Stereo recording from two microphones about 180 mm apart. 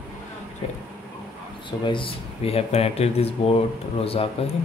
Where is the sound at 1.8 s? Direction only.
30° left (ahead or behind).